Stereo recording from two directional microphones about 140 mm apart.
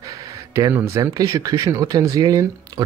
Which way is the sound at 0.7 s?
15° right (ahead or behind).